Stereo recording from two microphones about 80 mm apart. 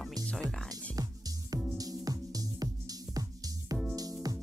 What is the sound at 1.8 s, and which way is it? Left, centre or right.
Music, right.